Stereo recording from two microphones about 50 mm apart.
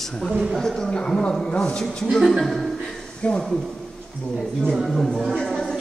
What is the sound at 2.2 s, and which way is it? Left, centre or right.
Speech, centre.